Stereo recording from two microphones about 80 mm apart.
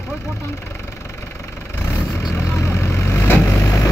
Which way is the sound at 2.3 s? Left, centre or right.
Left.